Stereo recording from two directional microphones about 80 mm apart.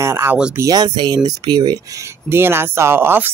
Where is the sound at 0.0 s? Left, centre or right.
Right.